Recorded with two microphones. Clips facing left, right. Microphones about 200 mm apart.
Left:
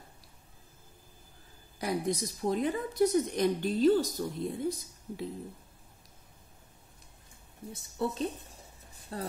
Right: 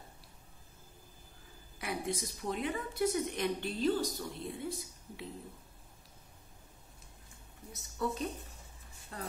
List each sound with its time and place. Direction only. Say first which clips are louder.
1.8 s a woman's voice: left 6 dB; 40° left (ahead or behind)
7.7 s a woman's voice: left 3 dB; 30° left (ahead or behind)